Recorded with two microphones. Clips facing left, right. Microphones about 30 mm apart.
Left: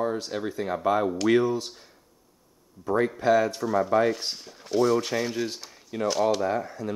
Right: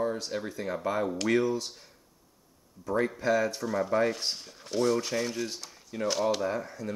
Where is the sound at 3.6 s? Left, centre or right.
Centre.